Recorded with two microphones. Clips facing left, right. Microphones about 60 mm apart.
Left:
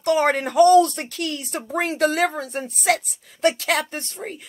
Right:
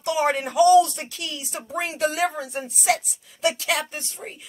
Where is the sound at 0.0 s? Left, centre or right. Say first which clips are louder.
Left 3 dB; left.